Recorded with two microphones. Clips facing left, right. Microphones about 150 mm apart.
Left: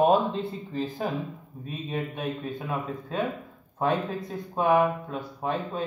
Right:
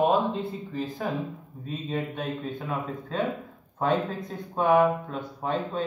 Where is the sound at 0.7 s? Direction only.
25° left (ahead or behind).